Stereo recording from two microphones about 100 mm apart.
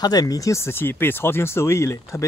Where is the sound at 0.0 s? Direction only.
40° left (ahead or behind).